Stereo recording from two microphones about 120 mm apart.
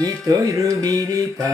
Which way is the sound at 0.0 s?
30° right (ahead or behind).